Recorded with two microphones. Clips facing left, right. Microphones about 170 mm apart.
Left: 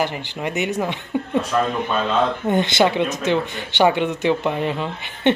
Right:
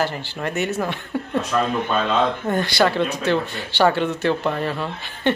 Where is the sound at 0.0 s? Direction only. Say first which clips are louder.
Even; 15° left (ahead or behind).